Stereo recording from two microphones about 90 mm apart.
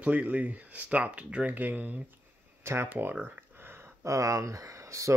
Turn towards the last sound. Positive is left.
turn(degrees=-35)  # may be behind; listen again after turning